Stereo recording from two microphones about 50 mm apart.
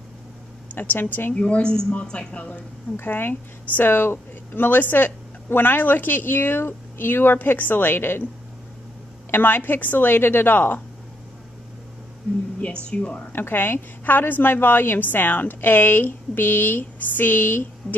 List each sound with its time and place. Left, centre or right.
0.7 s a woman's voice: left
1.3 s a woman's voice: left
3.0 s speech: left
9.3 s speech: left
12.8 s a woman's voice: left
13.3 s speech: left